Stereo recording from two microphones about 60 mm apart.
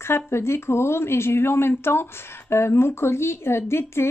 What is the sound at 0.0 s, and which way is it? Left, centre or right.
Speech, left.